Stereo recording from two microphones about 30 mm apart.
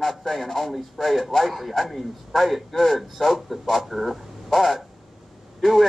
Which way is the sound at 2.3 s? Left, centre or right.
Centre.